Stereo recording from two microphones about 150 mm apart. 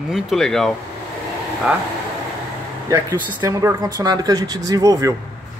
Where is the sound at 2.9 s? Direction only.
15° right (ahead or behind).